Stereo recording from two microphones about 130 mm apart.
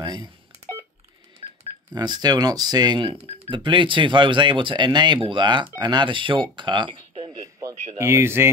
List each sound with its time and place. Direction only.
0.0 s telephone dialing: 35° right (ahead or behind)
2.0 s speech: 30° right (ahead or behind); by 3.5 s 50° right (ahead or behind)
3.5 s speech: 40° right (ahead or behind)
6.5 s a sound: 35° right (ahead or behind)
8.0 s speech: 20° right (ahead or behind)